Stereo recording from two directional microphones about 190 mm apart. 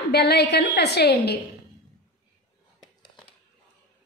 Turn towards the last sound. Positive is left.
turn(degrees=5)  # may be behind; listen again after turning